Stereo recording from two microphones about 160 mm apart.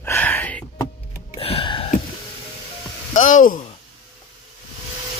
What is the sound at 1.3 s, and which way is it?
Gasp, 35° left (ahead or behind).